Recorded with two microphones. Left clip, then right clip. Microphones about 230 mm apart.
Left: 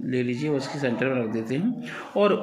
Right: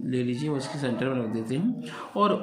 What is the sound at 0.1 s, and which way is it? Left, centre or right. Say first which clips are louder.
Speech: left 3 dB; centre.